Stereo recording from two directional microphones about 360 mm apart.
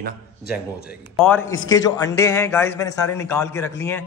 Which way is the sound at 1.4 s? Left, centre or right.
Left.